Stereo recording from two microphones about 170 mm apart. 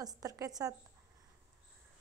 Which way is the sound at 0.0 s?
20° right (ahead or behind).